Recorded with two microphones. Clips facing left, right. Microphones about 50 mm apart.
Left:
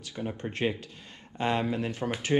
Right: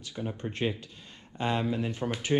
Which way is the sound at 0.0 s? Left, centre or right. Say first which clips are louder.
Left 1 dB; left.